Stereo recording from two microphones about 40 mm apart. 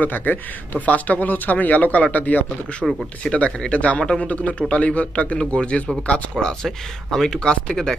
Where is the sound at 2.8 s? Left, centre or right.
Right.